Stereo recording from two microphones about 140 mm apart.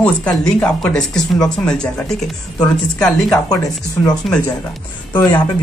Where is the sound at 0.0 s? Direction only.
10° left (ahead or behind).